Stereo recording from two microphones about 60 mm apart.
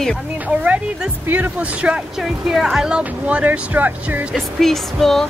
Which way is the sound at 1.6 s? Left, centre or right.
Right.